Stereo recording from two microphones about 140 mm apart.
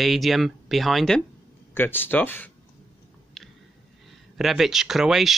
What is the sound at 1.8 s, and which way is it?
Speech, 15° left (ahead or behind).